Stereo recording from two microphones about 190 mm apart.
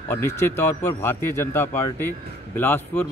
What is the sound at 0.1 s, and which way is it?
Speech, 10° left (ahead or behind).